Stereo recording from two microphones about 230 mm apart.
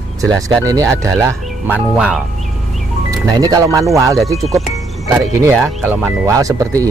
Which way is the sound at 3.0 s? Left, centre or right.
Centre.